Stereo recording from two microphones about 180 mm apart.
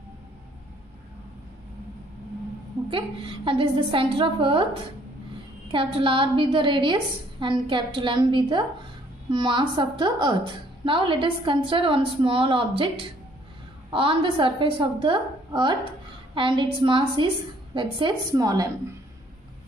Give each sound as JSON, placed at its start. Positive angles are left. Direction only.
{"t": 2.9, "sound": "a woman's voice", "side_deg": -30}
{"t": 5.7, "sound": "a woman's voice", "side_deg": -30}